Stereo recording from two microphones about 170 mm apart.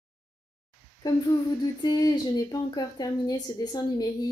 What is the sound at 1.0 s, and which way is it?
Speech, 25° left (ahead or behind).